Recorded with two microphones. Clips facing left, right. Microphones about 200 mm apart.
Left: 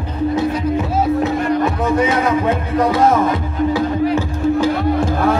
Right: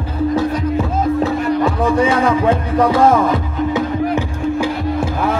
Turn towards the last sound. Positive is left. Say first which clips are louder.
# left 3 dB
turn(degrees=-10)  # may be behind; listen again after turning